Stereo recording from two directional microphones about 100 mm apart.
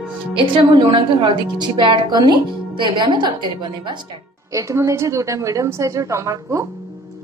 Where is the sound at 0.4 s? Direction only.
65° right (ahead or behind).